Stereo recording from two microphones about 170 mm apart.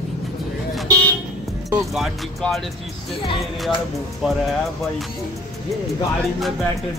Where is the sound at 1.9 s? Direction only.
Centre (ahead or behind).